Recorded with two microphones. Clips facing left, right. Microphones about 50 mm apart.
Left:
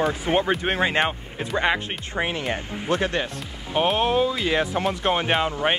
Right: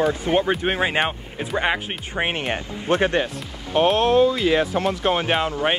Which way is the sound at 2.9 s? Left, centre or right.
Right.